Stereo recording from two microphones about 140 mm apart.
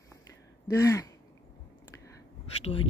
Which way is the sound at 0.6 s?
20° left (ahead or behind).